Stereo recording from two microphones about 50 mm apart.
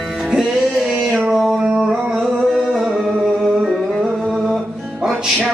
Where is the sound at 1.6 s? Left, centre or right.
Centre.